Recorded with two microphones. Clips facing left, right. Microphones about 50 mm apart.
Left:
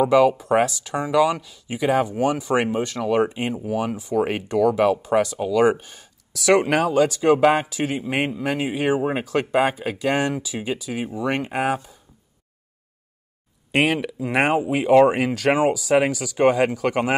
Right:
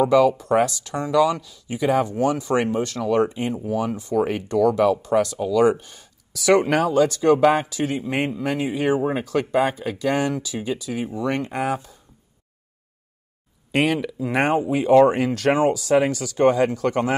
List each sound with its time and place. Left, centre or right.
0.0 s speech: centre
3.3 s speech: left
5.9 s speech: centre
8.5 s speech: centre
13.7 s speech: left
14.4 s speech: left
16.4 s speech: left
16.8 s speech: left